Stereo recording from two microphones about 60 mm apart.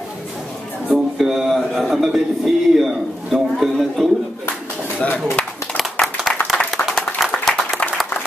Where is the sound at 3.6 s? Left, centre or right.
Centre.